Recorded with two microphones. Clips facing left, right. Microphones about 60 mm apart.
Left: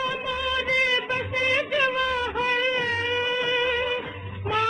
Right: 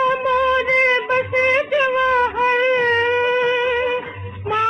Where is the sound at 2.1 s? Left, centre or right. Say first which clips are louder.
Right 8 dB; right.